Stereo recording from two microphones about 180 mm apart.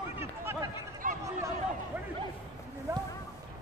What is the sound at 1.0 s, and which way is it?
Chatter, 50° right (ahead or behind).